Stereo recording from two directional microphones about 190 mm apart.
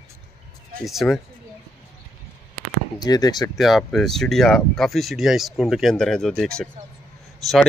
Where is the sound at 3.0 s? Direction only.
20° left (ahead or behind).